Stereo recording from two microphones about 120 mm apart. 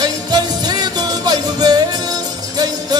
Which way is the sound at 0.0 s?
35° right (ahead or behind).